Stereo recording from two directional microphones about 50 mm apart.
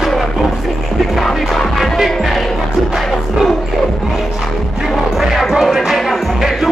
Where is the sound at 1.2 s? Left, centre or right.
Centre.